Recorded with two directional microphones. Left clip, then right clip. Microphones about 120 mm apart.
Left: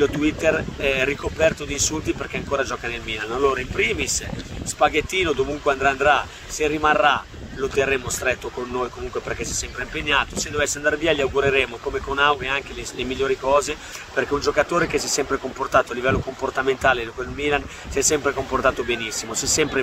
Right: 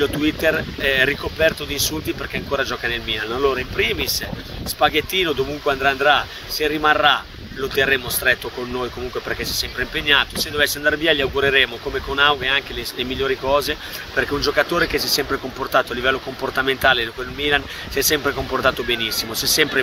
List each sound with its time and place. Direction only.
0.0 s speech: 20° left (ahead or behind)
15.7 s speech: 20° left (ahead or behind)
16.3 s speech: centre (ahead or behind)
16.6 s speech: 15° left (ahead or behind)
18.2 s speech: 5° left (ahead or behind); by 19.7 s 20° left (ahead or behind)